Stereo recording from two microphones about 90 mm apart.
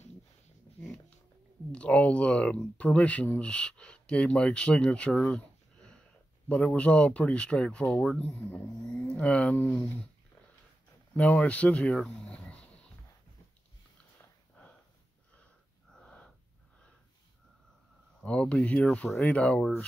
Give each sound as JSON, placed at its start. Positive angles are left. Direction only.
{"t": 1.7, "sound": "speech", "side_deg": 15}
{"t": 8.4, "sound": "speech", "side_deg": 20}
{"t": 11.1, "sound": "speech", "side_deg": 15}
{"t": 15.9, "sound": "gasp", "side_deg": 10}
{"t": 18.2, "sound": "speech", "side_deg": 15}